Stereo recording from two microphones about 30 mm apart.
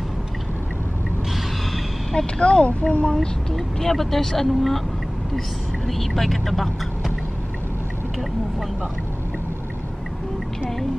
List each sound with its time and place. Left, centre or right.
2.1 s speech: left
2.6 s speech: left
3.5 s speech: centre
5.9 s speech: centre